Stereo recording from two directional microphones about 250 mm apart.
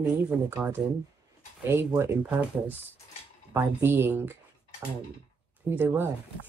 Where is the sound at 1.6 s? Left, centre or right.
Centre.